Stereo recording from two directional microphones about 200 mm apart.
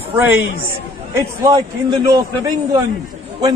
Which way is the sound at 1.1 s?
15° right (ahead or behind).